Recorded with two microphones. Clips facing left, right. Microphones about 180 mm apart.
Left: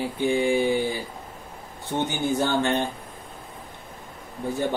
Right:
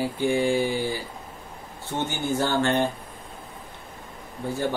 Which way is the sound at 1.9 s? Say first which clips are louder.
Left 2 dB; 20° left (ahead or behind).